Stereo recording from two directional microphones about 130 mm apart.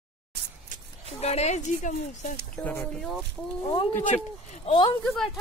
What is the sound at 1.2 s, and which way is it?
Speech, 55° left (ahead or behind).